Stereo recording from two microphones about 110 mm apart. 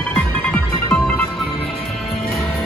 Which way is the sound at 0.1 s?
15° left (ahead or behind).